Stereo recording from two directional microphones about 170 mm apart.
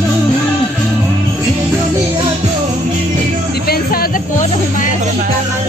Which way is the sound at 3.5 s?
60° left (ahead or behind).